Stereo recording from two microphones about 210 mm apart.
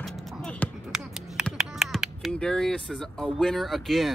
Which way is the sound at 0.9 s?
5° right (ahead or behind).